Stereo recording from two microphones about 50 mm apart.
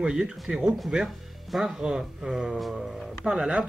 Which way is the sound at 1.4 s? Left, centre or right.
Centre.